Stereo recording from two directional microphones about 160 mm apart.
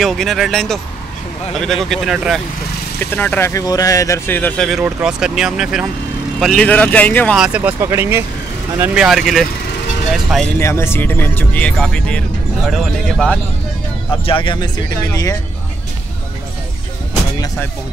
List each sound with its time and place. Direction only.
0.0 s speech: centre (ahead or behind)
3.0 s speech: 10° left (ahead or behind)
4.6 s speech: 5° right (ahead or behind)
7.3 s speech: 5° right (ahead or behind)
10.6 s speech: 15° left (ahead or behind); by 13.4 s centre (ahead or behind)
14.2 s speech: 30° left (ahead or behind)